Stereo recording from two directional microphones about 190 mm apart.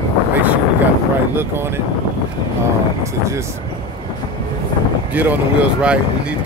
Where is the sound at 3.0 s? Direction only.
15° right (ahead or behind).